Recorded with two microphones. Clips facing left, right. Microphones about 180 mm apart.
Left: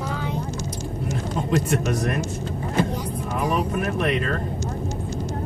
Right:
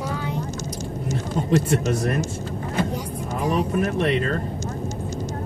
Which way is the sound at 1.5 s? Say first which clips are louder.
Right 2 dB; 30° right (ahead or behind).